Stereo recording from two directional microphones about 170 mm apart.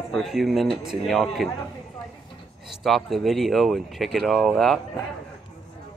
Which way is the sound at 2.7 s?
Centre (ahead or behind).